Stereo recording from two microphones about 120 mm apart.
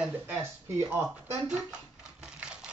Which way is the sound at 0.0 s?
15° right (ahead or behind).